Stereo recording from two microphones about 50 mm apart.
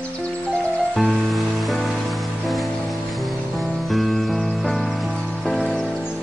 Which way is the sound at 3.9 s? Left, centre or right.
Centre.